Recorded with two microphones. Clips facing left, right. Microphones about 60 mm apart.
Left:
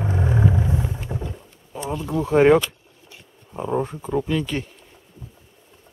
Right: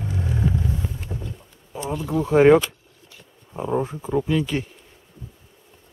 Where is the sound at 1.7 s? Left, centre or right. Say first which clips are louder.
Even; centre.